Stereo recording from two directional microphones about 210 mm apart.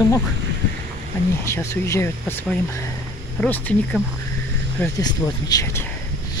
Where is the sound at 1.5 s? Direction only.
10° left (ahead or behind).